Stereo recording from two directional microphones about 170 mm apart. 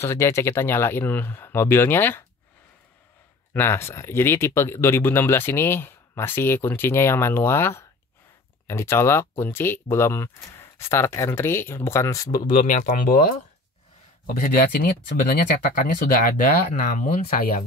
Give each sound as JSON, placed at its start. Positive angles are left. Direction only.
{"t": 0.0, "sound": "speech", "side_deg": 15}
{"t": 3.5, "sound": "speech", "side_deg": 15}
{"t": 12.4, "sound": "speech", "side_deg": 55}
{"t": 14.2, "sound": "speech", "side_deg": 60}